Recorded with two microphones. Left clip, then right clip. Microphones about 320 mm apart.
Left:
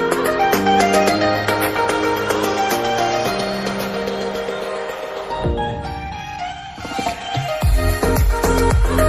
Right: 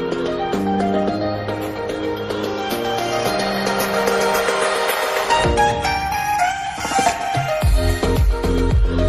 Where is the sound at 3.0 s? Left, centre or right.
Centre.